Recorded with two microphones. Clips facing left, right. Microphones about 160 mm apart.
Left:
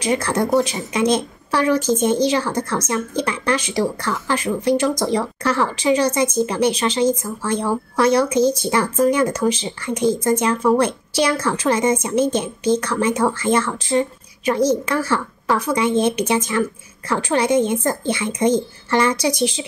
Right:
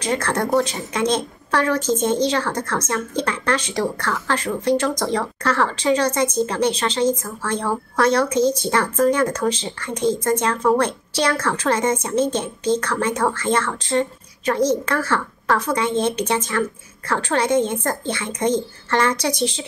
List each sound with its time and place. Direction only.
0.0 s a woman's voice: 10° left (ahead or behind)